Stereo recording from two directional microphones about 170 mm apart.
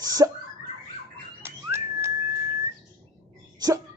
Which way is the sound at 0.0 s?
20° right (ahead or behind).